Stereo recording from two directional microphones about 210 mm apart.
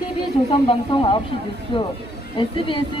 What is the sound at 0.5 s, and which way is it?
Speech, 25° left (ahead or behind).